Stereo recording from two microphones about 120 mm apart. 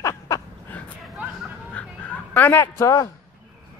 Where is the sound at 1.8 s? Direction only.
10° left (ahead or behind).